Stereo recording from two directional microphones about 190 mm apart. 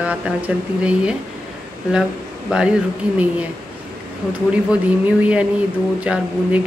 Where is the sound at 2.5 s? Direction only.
5° right (ahead or behind).